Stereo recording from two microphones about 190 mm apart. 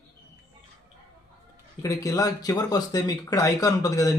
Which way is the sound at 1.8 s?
20° left (ahead or behind).